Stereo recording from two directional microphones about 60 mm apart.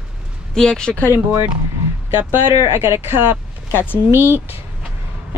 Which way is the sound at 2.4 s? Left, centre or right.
Right.